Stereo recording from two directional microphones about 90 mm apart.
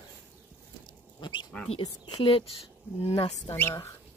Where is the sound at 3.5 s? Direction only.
30° left (ahead or behind).